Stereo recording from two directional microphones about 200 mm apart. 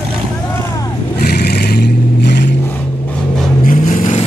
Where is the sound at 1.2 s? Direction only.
50° left (ahead or behind).